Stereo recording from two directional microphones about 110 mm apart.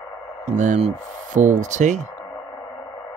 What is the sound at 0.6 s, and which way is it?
Speech, 65° right (ahead or behind).